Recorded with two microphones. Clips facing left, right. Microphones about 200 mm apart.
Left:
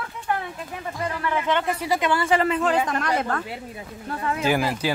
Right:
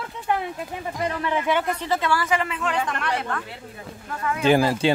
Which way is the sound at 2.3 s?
35° left (ahead or behind).